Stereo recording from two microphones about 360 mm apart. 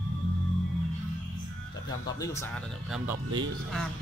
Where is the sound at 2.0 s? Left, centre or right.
Centre.